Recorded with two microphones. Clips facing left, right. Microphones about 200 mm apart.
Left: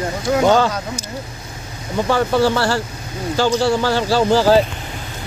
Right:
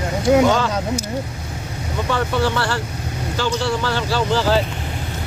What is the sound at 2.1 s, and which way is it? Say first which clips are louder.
Speech: left 4 dB; 35° left (ahead or behind).